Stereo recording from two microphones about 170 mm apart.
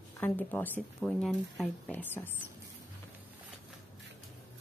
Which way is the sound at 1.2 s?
5° right (ahead or behind).